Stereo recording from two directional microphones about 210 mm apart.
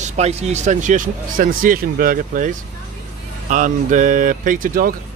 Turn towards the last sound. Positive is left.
turn(degrees=-40)  # may be behind; listen again after turning